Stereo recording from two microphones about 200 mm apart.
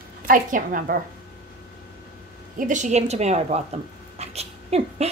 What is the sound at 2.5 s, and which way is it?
A woman's voice, 40° right (ahead or behind).